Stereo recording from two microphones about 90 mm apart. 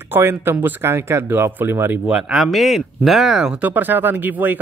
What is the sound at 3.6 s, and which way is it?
Speech, 20° right (ahead or behind).